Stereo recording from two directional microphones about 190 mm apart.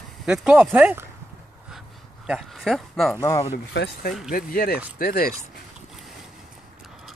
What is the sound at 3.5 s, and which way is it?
Speech, 55° left (ahead or behind).